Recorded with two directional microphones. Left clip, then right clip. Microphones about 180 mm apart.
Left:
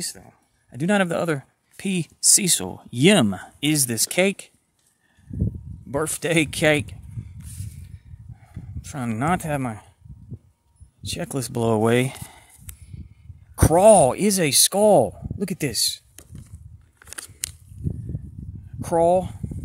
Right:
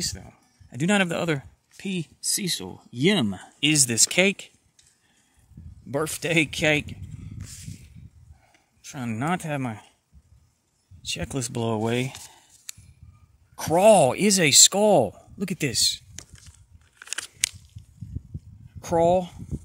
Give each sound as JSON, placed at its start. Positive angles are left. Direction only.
{"t": 0.7, "sound": "speech", "side_deg": 5}
{"t": 1.8, "sound": "speech", "side_deg": 30}
{"t": 3.3, "sound": "speech", "side_deg": 15}
{"t": 6.0, "sound": "speech", "side_deg": 15}
{"t": 8.8, "sound": "speech", "side_deg": 15}
{"t": 11.0, "sound": "speech", "side_deg": 15}
{"t": 13.7, "sound": "speech", "side_deg": 10}
{"t": 17.0, "sound": "crunch", "side_deg": 20}
{"t": 18.8, "sound": "speech", "side_deg": 5}